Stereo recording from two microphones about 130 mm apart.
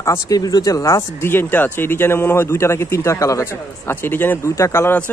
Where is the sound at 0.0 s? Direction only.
25° left (ahead or behind).